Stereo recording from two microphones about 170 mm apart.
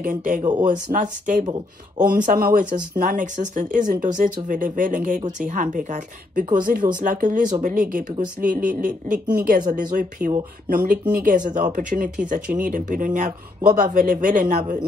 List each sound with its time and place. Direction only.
0.0 s speech: 55° right (ahead or behind)